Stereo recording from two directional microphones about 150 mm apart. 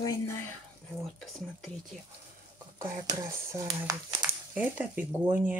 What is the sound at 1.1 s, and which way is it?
Speech, 5° left (ahead or behind).